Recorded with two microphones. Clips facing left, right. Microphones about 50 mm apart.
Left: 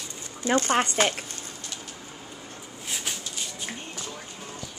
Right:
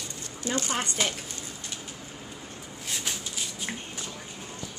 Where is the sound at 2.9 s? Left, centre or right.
Centre.